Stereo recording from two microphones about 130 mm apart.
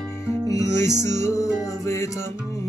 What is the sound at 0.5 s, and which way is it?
Music, 25° left (ahead or behind).